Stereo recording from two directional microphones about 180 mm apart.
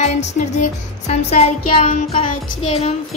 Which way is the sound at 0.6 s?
40° left (ahead or behind).